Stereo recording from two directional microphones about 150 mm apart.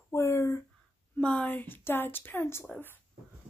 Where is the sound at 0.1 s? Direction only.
20° left (ahead or behind).